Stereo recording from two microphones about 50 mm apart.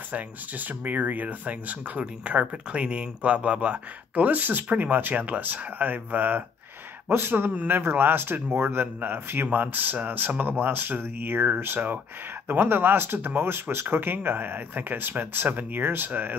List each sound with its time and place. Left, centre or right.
0.1 s speech: right